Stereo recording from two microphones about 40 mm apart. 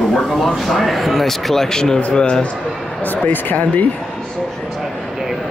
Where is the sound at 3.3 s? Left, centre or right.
Left.